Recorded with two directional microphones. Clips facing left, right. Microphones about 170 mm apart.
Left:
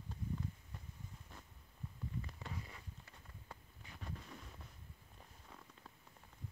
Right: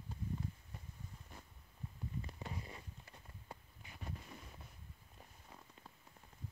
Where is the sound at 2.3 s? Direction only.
20° right (ahead or behind).